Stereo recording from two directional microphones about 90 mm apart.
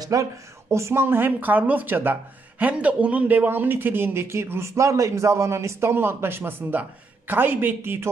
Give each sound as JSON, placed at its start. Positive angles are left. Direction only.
{"t": 0.0, "sound": "a man's voice", "side_deg": -40}